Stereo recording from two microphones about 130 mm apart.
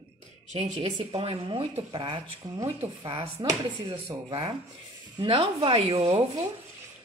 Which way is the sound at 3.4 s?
35° right (ahead or behind).